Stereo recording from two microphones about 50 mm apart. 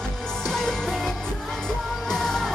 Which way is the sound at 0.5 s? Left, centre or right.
Centre.